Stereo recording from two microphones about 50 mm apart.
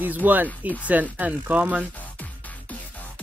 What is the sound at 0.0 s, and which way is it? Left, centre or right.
Speech, right.